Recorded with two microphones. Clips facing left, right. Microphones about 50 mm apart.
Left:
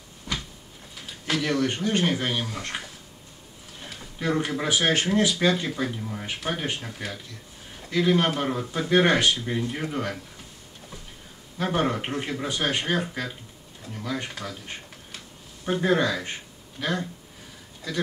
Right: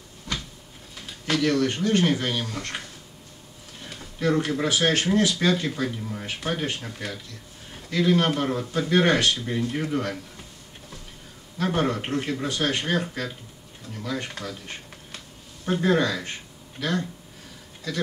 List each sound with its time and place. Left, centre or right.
0.3 s cupboard open or close: centre
0.9 s speech: centre
4.2 s speech: centre
11.5 s speech: centre
16.8 s speech: left